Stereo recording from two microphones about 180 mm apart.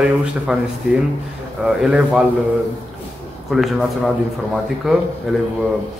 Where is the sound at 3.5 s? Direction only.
Centre (ahead or behind).